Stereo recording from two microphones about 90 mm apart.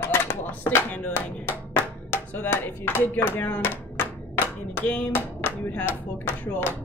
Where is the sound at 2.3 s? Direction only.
20° left (ahead or behind).